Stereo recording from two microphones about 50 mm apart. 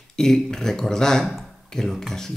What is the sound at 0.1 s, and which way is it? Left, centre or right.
Speech, centre.